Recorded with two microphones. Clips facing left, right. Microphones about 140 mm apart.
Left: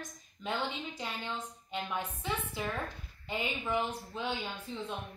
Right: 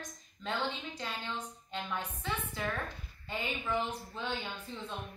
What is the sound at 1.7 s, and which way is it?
A woman's voice, 15° left (ahead or behind).